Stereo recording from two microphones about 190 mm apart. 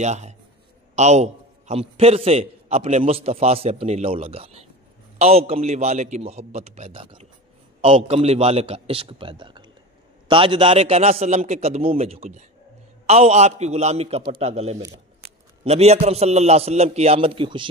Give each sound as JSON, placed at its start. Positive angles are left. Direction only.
{"t": 0.0, "sound": "a man's voice", "side_deg": -35}